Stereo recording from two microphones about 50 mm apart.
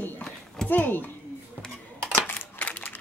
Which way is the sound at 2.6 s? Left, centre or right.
Left.